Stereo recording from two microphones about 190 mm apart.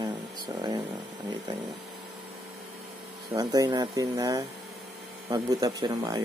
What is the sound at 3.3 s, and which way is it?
Speech, 20° right (ahead or behind).